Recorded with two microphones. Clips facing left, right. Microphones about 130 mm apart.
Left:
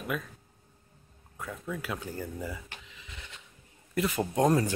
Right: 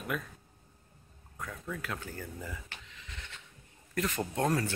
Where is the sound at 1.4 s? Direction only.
5° left (ahead or behind).